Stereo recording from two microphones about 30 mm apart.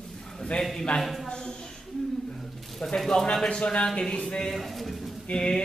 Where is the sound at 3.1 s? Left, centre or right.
Centre.